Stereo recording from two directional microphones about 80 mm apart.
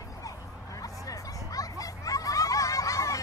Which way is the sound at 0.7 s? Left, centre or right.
Left.